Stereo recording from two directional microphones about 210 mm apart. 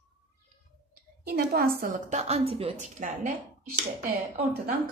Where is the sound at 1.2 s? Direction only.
45° right (ahead or behind).